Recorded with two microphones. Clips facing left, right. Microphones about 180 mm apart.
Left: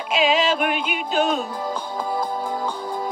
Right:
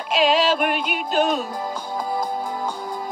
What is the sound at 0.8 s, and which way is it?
Music, 45° right (ahead or behind).